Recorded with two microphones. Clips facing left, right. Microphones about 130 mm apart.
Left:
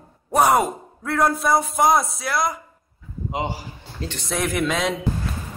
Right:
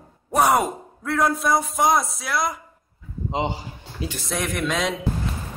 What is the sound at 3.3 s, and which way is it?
Speech, 25° right (ahead or behind).